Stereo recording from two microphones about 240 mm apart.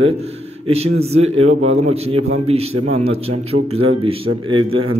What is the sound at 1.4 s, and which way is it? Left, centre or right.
Speech, right.